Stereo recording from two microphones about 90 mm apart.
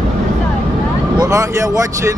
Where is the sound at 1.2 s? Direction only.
40° right (ahead or behind).